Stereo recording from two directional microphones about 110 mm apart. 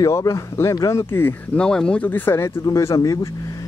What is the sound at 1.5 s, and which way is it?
Speech, 10° left (ahead or behind).